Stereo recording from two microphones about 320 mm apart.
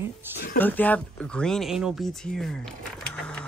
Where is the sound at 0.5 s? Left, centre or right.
Centre.